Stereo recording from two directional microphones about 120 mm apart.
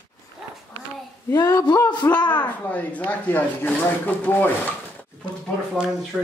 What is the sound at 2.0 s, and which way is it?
Speech, 10° left (ahead or behind).